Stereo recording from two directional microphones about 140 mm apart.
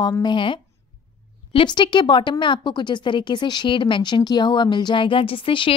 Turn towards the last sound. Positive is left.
turn(degrees=40)  # may be behind; listen again after turning